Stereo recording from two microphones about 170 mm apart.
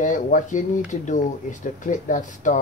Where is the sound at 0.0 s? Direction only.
50° left (ahead or behind).